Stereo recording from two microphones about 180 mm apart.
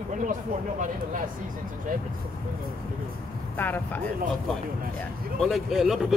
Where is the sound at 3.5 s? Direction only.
10° left (ahead or behind).